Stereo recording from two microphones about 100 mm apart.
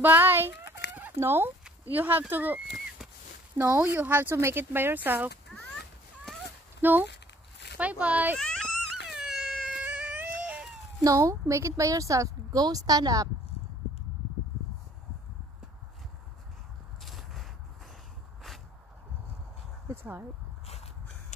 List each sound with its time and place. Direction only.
0.0 s chicken: 20° right (ahead or behind)
1.1 s speech: 25° right (ahead or behind)
3.8 s speech: 20° right (ahead or behind)
6.8 s speech: 20° right (ahead or behind)
8.4 s baby cry: 5° left (ahead or behind)
9.8 s a sound: 15° right (ahead or behind)
11.1 s speech: 35° right (ahead or behind)
17.0 s a sound: centre (ahead or behind)
19.9 s speech: 25° right (ahead or behind)
20.6 s a sound: 90° left